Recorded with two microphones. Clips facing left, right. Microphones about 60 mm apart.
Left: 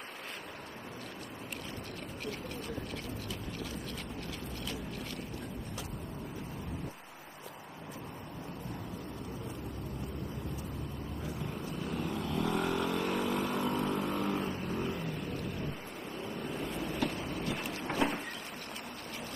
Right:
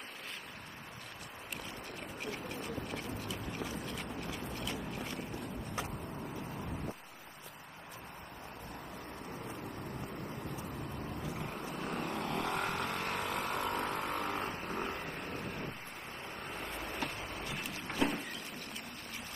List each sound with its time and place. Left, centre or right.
11.8 s vehicle: right
16.4 s vehicle: right
17.8 s vehicle: left